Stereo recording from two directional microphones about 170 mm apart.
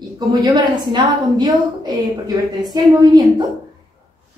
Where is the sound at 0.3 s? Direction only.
25° right (ahead or behind).